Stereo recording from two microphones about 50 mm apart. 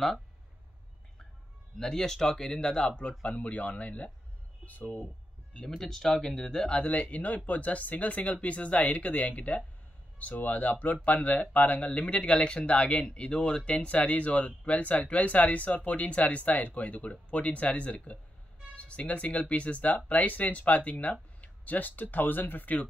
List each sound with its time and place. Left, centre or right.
1.8 s speech: centre; by 5.0 s left
5.5 s speech: left
5.8 s speech: centre
6.7 s speech: left